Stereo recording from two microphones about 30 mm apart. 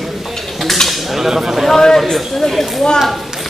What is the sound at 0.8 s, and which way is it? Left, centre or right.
Dishes, centre.